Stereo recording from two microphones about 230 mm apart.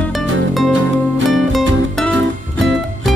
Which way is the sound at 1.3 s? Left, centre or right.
Centre.